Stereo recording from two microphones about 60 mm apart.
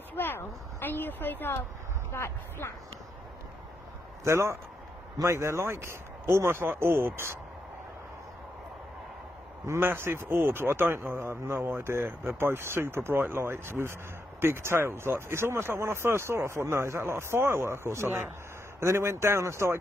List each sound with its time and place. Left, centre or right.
0.1 s a woman's voice: left
4.2 s speech: right
9.8 s speech: right